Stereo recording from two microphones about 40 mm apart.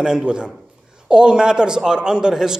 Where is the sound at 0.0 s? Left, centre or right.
Centre.